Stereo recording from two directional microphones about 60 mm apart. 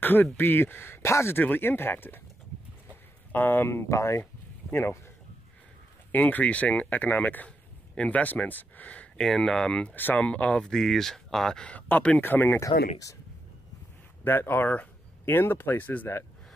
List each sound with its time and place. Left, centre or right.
0.0 s speech: left
1.4 s speech: left
3.3 s speech: left
6.1 s speech: left
7.9 s speech: centre
8.2 s speech: left
9.2 s speech: centre
10.7 s speech: centre
11.7 s speech: left
12.2 s speech: left
12.5 s speech: left
14.2 s speech: left